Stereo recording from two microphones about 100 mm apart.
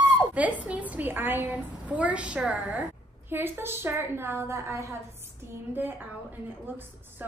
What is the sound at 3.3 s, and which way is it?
Speech, 25° right (ahead or behind).